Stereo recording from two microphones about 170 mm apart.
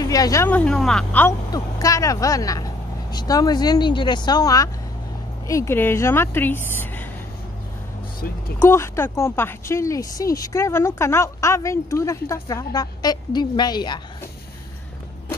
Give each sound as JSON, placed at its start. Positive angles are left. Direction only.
{"t": 0.0, "sound": "a woman's voice", "side_deg": 20}
{"t": 1.5, "sound": "a woman's voice", "side_deg": 20}
{"t": 8.5, "sound": "a woman's voice", "side_deg": 15}